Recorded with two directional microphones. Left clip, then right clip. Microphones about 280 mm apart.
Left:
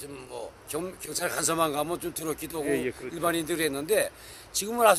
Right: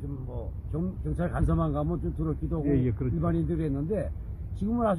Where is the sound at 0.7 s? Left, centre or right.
Centre.